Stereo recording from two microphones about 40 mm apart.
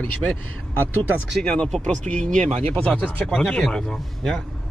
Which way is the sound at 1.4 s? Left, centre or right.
Left.